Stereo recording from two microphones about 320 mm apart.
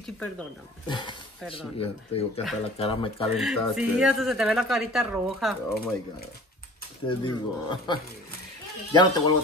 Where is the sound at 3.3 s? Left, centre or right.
Centre.